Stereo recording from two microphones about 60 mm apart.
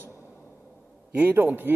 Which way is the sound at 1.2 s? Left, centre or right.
Right.